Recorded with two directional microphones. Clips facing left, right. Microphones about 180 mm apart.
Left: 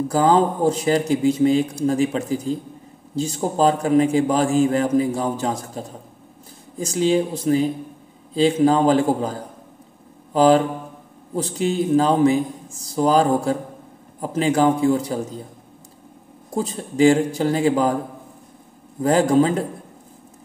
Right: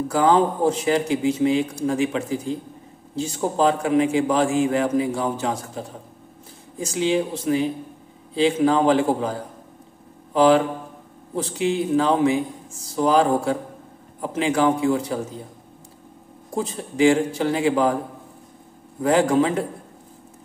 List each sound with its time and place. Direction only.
0.1 s a man's voice: 35° left (ahead or behind)
10.3 s a man's voice: 35° left (ahead or behind)
16.5 s a man's voice: 40° left (ahead or behind)
19.0 s a man's voice: 40° left (ahead or behind)